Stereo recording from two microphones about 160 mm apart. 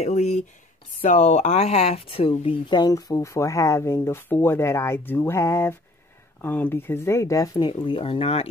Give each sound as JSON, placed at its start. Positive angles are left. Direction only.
{"t": 0.0, "sound": "speech", "side_deg": 45}